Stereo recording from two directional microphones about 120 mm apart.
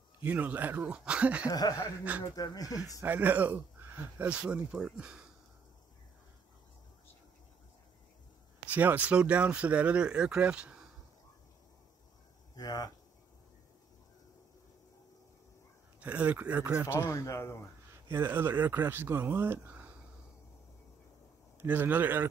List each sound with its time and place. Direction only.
0.2 s speech: 10° right (ahead or behind)
1.5 s speech: 30° left (ahead or behind)
3.0 s speech: 15° right (ahead or behind)
8.7 s speech: 15° right (ahead or behind)
12.5 s speech: 35° left (ahead or behind)
16.0 s speech: 10° right (ahead or behind)
17.1 s speech: 25° left (ahead or behind)
17.9 s speech: 20° right (ahead or behind)
21.5 s speech: 15° right (ahead or behind)